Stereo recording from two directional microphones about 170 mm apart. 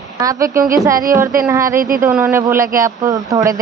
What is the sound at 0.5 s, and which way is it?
Child singing, 20° right (ahead or behind).